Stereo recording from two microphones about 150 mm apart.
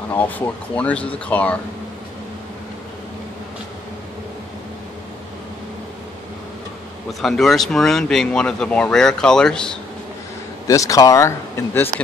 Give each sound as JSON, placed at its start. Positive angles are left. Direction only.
{"t": 0.1, "sound": "speech", "side_deg": 10}
{"t": 7.1, "sound": "speech", "side_deg": 0}
{"t": 10.7, "sound": "speech", "side_deg": 20}